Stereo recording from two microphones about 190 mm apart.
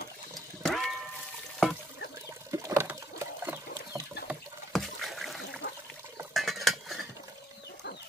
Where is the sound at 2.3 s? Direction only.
15° right (ahead or behind).